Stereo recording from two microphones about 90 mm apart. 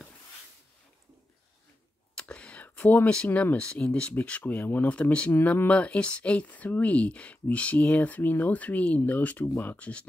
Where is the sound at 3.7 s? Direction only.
15° left (ahead or behind).